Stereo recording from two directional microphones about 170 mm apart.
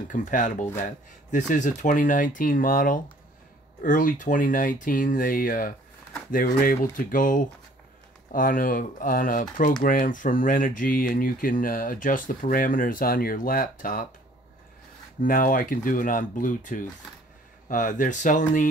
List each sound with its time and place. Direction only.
0.1 s speech: 50° left (ahead or behind)
15.2 s speech: 55° left (ahead or behind)